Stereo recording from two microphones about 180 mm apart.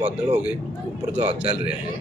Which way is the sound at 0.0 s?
35° right (ahead or behind).